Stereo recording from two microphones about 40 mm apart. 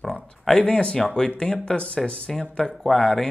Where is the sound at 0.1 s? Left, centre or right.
Left.